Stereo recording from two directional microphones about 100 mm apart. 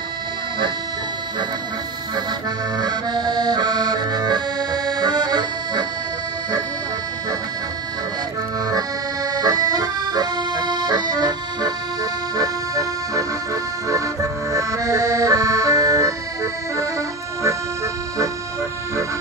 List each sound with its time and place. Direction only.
2.8 s accordion: 45° right (ahead or behind)
8.6 s accordion: 40° right (ahead or behind)